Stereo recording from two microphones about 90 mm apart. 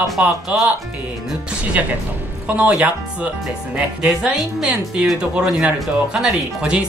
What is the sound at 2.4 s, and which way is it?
A woman's voice, 10° right (ahead or behind).